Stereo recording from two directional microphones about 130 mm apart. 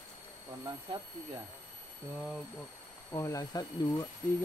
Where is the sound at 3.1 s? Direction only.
25° left (ahead or behind).